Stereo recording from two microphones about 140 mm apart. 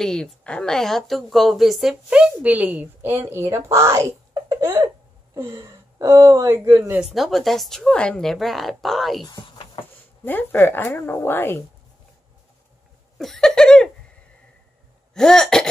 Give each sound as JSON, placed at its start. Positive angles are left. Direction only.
{"t": 0.0, "sound": "a woman's voice", "side_deg": 5}
{"t": 7.2, "sound": "speech", "side_deg": 0}
{"t": 9.2, "sound": "a sound", "side_deg": 35}
{"t": 10.2, "sound": "a woman's voice", "side_deg": 15}
{"t": 13.2, "sound": "speech", "side_deg": 5}
{"t": 15.1, "sound": "speech", "side_deg": 5}